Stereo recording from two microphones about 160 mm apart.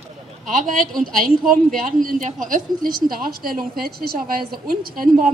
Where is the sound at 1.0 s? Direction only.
60° right (ahead or behind).